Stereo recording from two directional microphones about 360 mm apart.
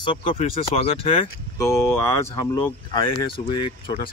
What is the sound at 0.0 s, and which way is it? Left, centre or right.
Speech, centre.